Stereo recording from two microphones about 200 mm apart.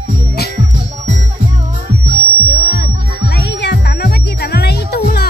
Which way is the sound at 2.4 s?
50° left (ahead or behind).